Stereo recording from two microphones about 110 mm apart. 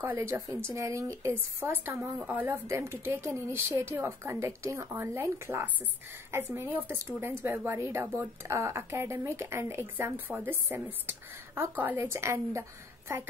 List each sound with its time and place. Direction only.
0.0 s a woman's voice: 20° right (ahead or behind)